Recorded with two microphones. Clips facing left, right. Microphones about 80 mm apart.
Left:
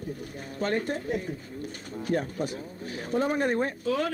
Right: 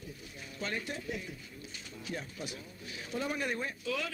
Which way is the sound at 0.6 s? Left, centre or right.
Left.